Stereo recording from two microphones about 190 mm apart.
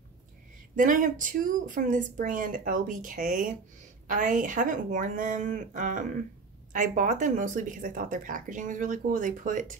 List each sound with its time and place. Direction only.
0.7 s speech: 45° right (ahead or behind)